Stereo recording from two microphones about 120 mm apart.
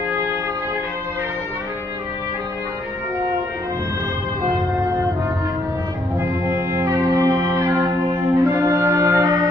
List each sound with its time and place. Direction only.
6.4 s music: 25° right (ahead or behind)